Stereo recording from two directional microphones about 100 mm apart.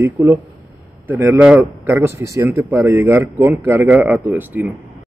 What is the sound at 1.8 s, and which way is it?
Speech, 25° right (ahead or behind).